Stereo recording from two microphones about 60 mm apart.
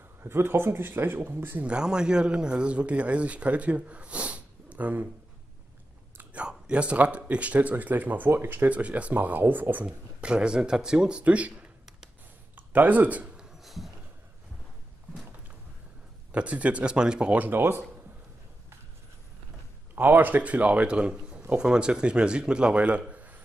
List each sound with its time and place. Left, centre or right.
0.2 s speech: right
1.7 s speech: centre
6.3 s speech: centre; by 8.6 s right
8.6 s speech: right
9.8 s speech: centre
12.5 s speech: right
13.4 s a sound: centre
16.3 s speech: right
17.4 s speech: right
20.0 s speech: right